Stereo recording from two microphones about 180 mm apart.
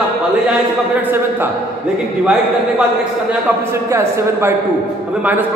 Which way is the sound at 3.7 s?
15° right (ahead or behind).